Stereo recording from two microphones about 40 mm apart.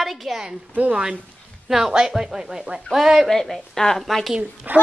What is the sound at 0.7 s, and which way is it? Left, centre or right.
Speech, right.